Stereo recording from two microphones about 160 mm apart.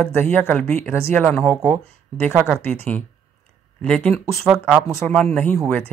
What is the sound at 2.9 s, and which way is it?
Speech, 10° left (ahead or behind).